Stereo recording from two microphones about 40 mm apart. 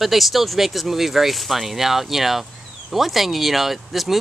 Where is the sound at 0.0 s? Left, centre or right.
Centre.